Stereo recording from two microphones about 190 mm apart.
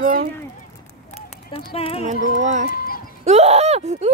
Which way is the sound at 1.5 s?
30° left (ahead or behind).